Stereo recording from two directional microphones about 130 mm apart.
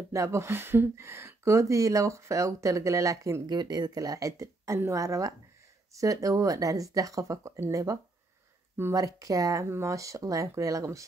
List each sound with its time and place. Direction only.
0.1 s speech: 20° right (ahead or behind)